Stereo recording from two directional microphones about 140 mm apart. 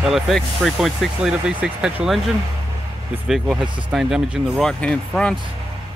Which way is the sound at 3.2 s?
5° right (ahead or behind).